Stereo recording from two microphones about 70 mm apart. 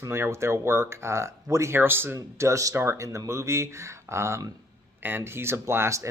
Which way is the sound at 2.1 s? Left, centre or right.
Right.